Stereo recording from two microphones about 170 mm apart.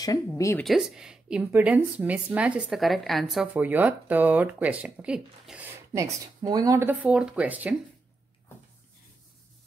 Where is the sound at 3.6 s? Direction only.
10° right (ahead or behind).